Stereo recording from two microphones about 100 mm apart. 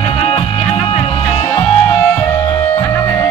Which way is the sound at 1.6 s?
30° left (ahead or behind).